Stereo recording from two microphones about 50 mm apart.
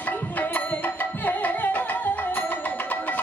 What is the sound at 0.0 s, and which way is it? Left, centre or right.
Music, left.